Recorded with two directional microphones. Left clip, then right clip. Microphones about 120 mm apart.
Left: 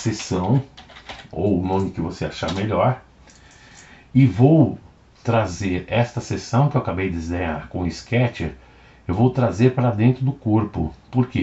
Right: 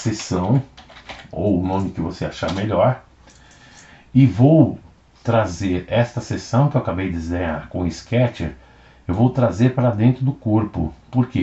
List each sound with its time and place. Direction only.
0.0 s speech: 15° left (ahead or behind)
2.0 s speech: 30° left (ahead or behind)
2.4 s speech: 20° left (ahead or behind)
4.1 s speech: 15° left (ahead or behind)